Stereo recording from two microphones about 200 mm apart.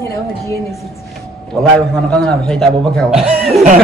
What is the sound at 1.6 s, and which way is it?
Speech, 5° left (ahead or behind).